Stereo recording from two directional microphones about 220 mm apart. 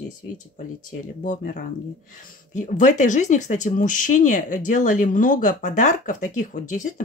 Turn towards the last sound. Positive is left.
turn(degrees=35)  # may be behind; listen again after turning